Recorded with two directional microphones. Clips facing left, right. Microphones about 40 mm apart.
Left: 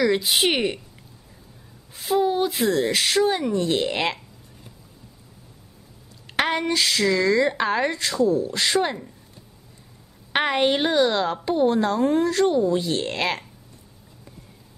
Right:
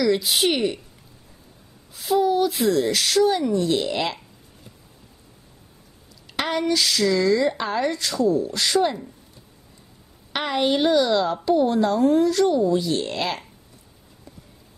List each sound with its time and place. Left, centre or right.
0.0 s a woman's voice: left
2.0 s a woman's voice: left
6.2 s a sound: left
6.7 s a woman's voice: left
10.3 s a woman's voice: left